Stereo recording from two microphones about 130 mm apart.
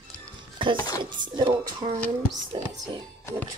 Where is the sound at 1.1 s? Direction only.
40° right (ahead or behind).